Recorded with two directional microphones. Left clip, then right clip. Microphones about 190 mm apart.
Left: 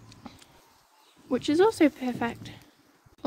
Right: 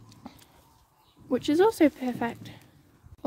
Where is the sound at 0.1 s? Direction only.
20° right (ahead or behind).